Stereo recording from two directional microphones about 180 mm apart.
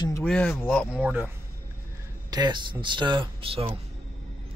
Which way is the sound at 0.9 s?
10° right (ahead or behind).